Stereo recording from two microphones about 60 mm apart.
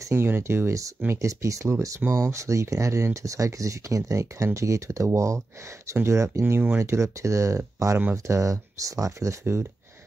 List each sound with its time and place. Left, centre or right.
0.1 s speech: right
1.2 s speech: right
9.4 s speech: right